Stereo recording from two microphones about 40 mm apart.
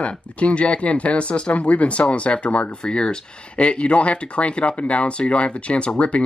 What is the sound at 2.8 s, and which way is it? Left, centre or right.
Speech, left.